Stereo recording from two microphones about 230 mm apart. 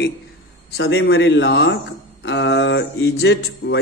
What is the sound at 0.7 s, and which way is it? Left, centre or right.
A man's voice, left.